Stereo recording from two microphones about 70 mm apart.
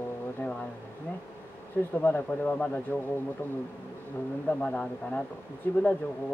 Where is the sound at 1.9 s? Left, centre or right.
Left.